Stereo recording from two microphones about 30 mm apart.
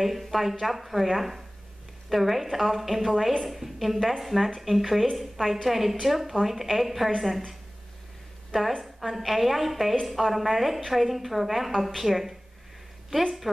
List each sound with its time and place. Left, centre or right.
0.0 s a woman's voice: centre
8.5 s a woman's voice: centre
8.8 s a woman's voice: centre